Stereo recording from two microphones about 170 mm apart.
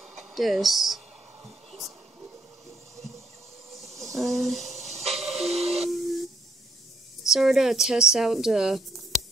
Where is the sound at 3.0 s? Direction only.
40° right (ahead or behind).